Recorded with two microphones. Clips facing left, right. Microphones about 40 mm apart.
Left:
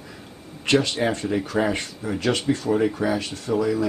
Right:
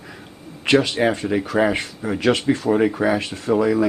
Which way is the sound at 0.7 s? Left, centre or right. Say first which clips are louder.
Right 4 dB; centre.